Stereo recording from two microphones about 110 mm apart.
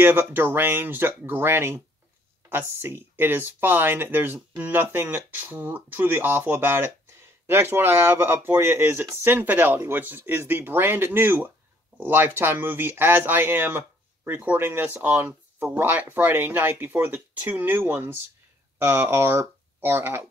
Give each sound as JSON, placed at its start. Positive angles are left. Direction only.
{"t": 0.0, "sound": "speech", "side_deg": -20}